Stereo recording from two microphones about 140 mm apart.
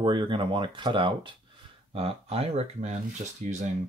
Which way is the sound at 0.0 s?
35° right (ahead or behind).